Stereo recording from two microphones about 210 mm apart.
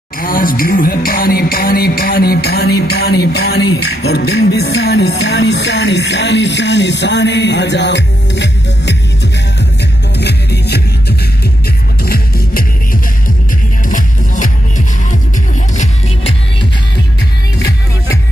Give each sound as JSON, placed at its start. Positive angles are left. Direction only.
{"t": 0.2, "sound": "music", "side_deg": 40}
{"t": 13.8, "sound": "music", "side_deg": 40}
{"t": 15.7, "sound": "music", "side_deg": 35}